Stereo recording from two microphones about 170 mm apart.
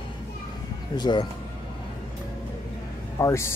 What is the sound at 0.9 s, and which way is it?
Speech, 25° left (ahead or behind).